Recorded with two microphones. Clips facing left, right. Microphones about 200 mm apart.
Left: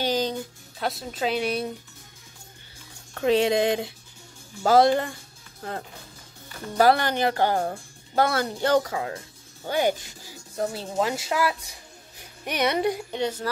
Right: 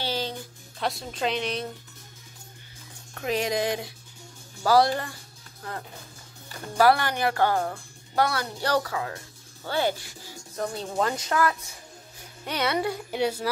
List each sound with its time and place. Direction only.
0.0 s music: 15° left (ahead or behind)
0.7 s a woman's voice: 5° left (ahead or behind)
3.2 s speech: 30° left (ahead or behind)
5.6 s speech: 35° left (ahead or behind)
6.8 s a woman's voice: 25° left (ahead or behind)
10.6 s a woman's voice: 5° left (ahead or behind)
13.1 s speech: 10° right (ahead or behind)